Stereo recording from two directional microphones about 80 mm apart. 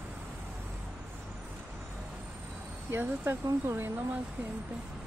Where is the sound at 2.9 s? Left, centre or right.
Right.